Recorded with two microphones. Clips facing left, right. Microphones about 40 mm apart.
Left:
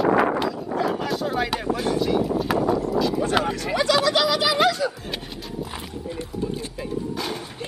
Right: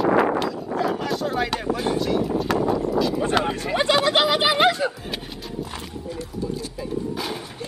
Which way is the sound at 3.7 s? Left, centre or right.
Right.